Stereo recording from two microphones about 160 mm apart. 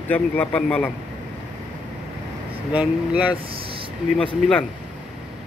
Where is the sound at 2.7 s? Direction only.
10° right (ahead or behind).